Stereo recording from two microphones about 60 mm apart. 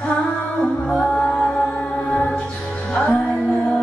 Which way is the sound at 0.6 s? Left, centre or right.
Centre.